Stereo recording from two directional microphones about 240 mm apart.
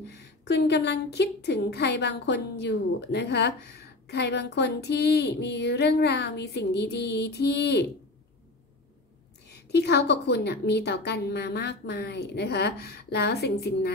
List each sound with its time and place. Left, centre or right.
0.0 s a woman's voice: left
9.5 s a woman's voice: left